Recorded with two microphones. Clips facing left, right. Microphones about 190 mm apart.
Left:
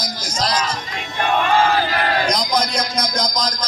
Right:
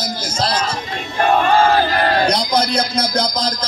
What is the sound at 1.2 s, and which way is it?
Speech, 40° right (ahead or behind).